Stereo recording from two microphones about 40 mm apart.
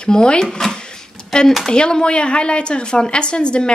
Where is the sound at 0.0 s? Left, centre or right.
Left.